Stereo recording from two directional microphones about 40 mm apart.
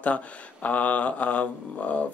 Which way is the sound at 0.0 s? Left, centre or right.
Left.